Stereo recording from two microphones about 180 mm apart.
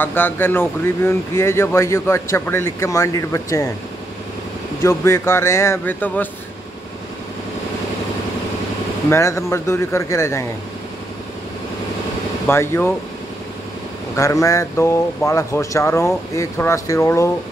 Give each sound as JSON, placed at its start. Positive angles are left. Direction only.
{"t": 0.0, "sound": "speech", "side_deg": 10}
{"t": 4.8, "sound": "speech", "side_deg": 15}
{"t": 9.1, "sound": "speech", "side_deg": 15}
{"t": 12.4, "sound": "speech", "side_deg": 15}
{"t": 14.1, "sound": "speech", "side_deg": 15}